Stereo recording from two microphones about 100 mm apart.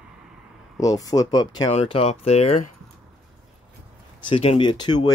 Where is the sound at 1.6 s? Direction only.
75° left (ahead or behind).